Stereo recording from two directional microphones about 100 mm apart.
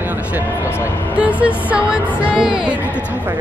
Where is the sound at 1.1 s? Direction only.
15° right (ahead or behind).